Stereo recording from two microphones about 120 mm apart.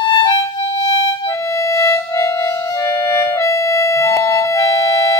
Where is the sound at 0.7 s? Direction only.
55° left (ahead or behind).